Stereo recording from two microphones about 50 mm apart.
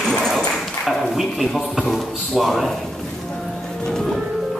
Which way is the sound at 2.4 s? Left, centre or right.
Centre.